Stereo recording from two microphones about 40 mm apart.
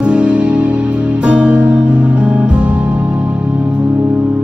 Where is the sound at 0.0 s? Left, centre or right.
Right.